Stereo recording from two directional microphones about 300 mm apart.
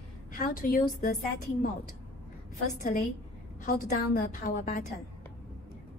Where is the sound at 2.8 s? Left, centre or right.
Left.